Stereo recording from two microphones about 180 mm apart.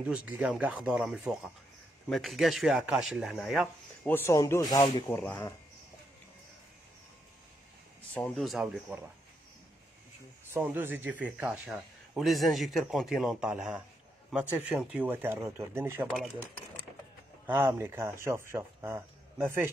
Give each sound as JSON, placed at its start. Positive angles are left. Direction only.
{"t": 0.0, "sound": "a man's voice", "side_deg": -5}
{"t": 4.1, "sound": "speech", "side_deg": 15}
{"t": 5.0, "sound": "speech", "side_deg": 10}
{"t": 8.1, "sound": "a man's voice", "side_deg": 5}
{"t": 10.5, "sound": "a man's voice", "side_deg": -10}
{"t": 17.5, "sound": "speech", "side_deg": -10}